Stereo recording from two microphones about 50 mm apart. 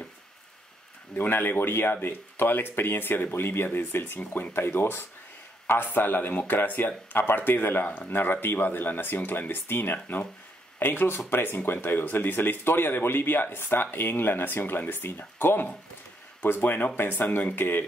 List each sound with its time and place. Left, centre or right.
1.1 s speech: left